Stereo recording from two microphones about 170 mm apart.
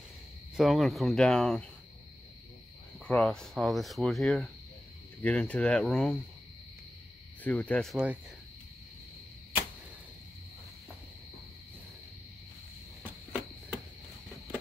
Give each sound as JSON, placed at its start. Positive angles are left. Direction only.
{"t": 0.6, "sound": "speech", "side_deg": 0}
{"t": 3.1, "sound": "speech", "side_deg": 5}
{"t": 7.4, "sound": "speech", "side_deg": 10}
{"t": 13.0, "sound": "cricket", "side_deg": -5}